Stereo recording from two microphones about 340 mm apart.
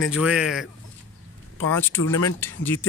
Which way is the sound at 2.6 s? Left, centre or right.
Left.